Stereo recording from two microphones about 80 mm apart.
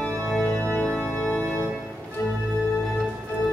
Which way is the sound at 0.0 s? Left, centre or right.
Centre.